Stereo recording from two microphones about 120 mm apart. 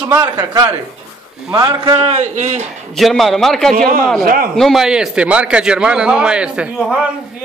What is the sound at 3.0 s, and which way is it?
A man's voice, centre (ahead or behind).